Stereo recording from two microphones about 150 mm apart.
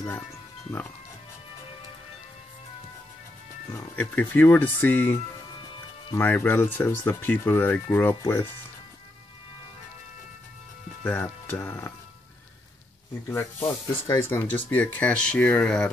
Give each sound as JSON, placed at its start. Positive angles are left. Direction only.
{"t": 0.7, "sound": "speech", "side_deg": 10}
{"t": 3.7, "sound": "speech", "side_deg": 10}
{"t": 11.1, "sound": "speech", "side_deg": 15}
{"t": 13.3, "sound": "speech", "side_deg": 15}